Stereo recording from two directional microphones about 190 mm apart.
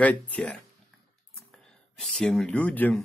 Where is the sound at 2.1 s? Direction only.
5° left (ahead or behind).